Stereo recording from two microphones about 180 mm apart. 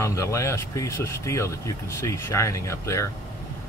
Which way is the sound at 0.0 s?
15° left (ahead or behind).